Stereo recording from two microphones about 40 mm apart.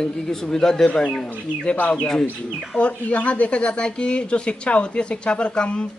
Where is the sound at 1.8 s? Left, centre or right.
Left.